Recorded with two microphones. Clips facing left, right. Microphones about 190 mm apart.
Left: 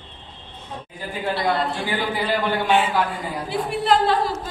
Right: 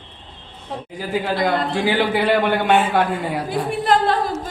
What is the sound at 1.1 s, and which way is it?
Speech, 90° right.